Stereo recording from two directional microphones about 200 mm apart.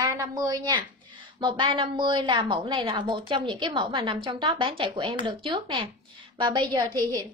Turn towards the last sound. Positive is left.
turn(degrees=-20)  # may be behind; listen again after turning